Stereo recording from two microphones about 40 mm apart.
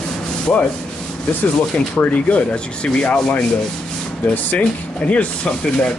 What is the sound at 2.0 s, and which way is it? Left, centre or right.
Rub, left.